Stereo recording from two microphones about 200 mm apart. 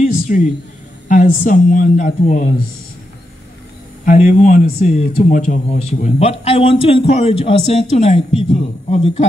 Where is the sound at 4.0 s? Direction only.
45° left (ahead or behind).